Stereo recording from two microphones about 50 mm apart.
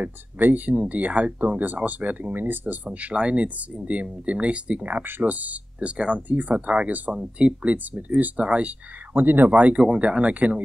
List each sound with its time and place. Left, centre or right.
0.0 s speech: right
9.1 s speech: right
9.6 s speech: right